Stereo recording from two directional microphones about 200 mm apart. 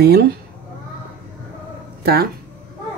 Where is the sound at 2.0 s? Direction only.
50° right (ahead or behind).